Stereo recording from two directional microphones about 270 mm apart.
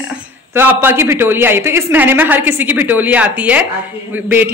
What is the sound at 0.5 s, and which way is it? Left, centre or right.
A woman's voice, centre.